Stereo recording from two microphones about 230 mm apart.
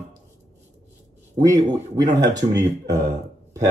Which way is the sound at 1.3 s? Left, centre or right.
Centre.